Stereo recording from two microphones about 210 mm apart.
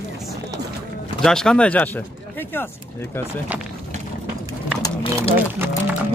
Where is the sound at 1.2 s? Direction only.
5° left (ahead or behind).